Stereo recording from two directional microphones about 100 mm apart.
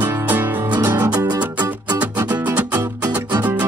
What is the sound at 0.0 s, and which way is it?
Music, 20° right (ahead or behind).